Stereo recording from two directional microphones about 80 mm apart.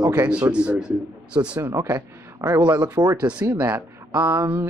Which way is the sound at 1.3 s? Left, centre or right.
Right.